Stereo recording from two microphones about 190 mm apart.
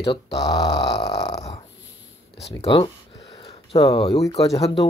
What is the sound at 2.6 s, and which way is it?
Speech, 30° left (ahead or behind).